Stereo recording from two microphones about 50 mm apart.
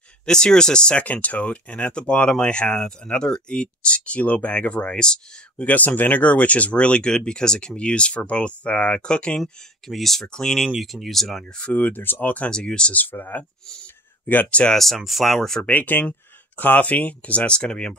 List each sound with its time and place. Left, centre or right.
0.2 s speech: centre
0.9 s speech: left
5.6 s speech: left; by 9.4 s centre
9.4 s speech: centre
10.2 s speech: centre
10.8 s speech: centre
11.7 s speech: left
12.4 s speech: centre
12.9 s speech: left
15.0 s speech: centre
15.6 s speech: left